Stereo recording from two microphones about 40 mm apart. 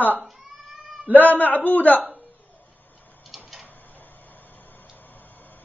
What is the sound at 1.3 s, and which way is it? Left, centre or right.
Speech, left.